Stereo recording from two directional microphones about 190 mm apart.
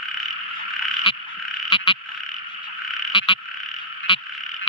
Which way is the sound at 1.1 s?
30° left (ahead or behind).